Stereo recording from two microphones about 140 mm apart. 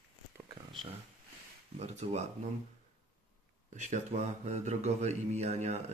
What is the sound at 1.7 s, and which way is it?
Speech, 55° right (ahead or behind).